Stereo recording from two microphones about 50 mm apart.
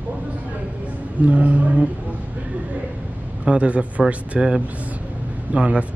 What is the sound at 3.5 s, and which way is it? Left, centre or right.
Speech, right.